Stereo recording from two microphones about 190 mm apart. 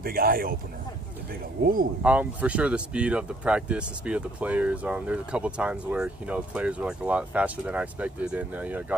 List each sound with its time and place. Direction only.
0.0 s a man's voice: 50° right (ahead or behind)
1.6 s a man's voice: 50° right (ahead or behind)
2.0 s speech: 5° right (ahead or behind)